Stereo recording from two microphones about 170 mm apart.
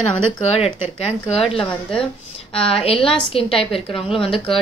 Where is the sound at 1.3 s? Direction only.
Centre (ahead or behind).